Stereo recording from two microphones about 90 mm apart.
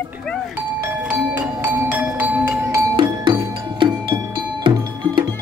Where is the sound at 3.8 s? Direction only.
65° right (ahead or behind).